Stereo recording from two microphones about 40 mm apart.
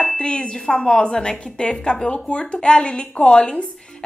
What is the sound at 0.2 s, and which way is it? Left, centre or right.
A woman's voice, left.